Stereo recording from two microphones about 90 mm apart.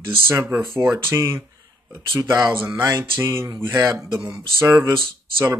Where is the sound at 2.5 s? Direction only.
25° right (ahead or behind).